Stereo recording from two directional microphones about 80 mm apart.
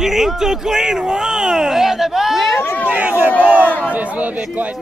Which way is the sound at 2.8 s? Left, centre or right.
Centre.